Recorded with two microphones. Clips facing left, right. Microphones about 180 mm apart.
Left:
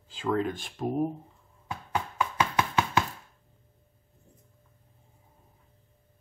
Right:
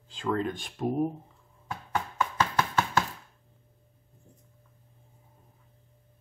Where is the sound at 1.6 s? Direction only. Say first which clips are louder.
Even; centre (ahead or behind).